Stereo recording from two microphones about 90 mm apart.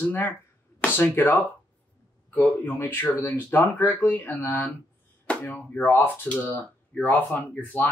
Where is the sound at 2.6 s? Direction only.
20° left (ahead or behind).